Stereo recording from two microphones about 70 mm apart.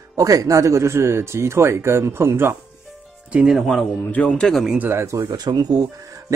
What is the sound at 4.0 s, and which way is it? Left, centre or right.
Speech, left.